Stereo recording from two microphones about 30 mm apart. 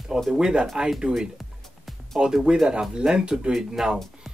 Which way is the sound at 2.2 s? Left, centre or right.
Centre.